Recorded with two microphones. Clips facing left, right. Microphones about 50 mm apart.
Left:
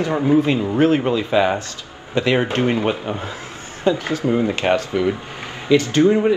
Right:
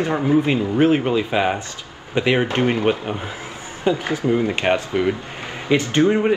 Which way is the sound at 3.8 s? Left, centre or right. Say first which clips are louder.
Left 1 dB; centre.